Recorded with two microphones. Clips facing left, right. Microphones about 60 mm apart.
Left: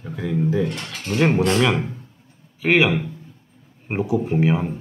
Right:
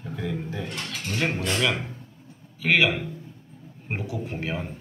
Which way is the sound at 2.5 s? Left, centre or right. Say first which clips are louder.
Left 4 dB; centre.